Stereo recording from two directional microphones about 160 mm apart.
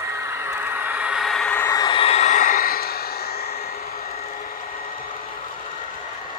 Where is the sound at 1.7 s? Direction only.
25° left (ahead or behind); by 3.5 s 75° left (ahead or behind).